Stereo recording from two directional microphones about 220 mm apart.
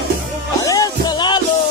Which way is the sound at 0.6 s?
15° left (ahead or behind).